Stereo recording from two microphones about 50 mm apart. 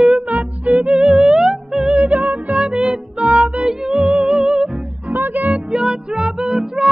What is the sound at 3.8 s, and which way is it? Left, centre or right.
Music, centre.